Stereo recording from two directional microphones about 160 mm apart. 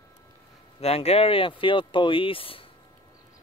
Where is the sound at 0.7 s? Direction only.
40° left (ahead or behind).